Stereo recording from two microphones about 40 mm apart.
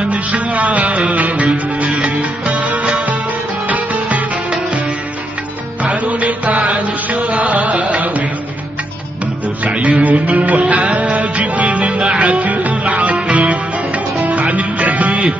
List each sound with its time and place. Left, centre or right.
0.0 s music: right
5.8 s music: right
9.7 s music: right